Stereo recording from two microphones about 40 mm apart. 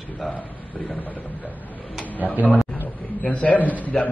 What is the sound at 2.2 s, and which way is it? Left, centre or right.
Speech, right.